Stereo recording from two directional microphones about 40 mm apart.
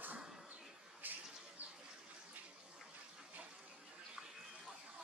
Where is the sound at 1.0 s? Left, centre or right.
Right.